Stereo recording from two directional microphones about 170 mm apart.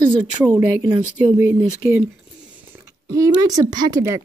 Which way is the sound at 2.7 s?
20° right (ahead or behind).